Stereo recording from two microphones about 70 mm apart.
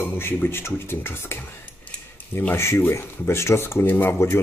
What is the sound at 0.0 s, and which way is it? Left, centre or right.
Speech, left.